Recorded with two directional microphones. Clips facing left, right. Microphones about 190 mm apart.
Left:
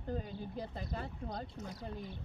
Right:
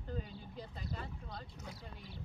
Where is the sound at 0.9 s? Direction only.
45° left (ahead or behind).